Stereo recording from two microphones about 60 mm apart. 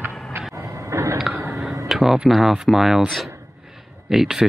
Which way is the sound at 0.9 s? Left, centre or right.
Right.